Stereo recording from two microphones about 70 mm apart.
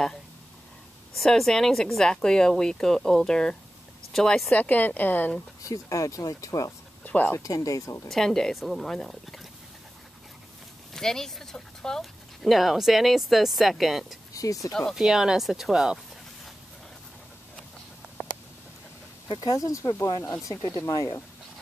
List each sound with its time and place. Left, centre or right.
1.1 s speech: centre; by 5.4 s left
5.6 s speech: left
7.1 s speech: left
7.3 s speech: left
8.1 s speech: centre
10.9 s speech: centre
14.3 s speech: left
14.7 s speech: centre
15.0 s speech: centre
19.4 s speech: left
20.1 s speech: left
20.3 s speech: left